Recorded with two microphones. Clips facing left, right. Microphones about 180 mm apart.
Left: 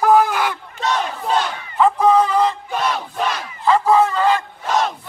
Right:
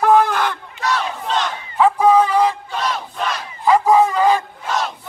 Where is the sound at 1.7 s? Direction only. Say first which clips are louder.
Right 1 dB; 5° right (ahead or behind).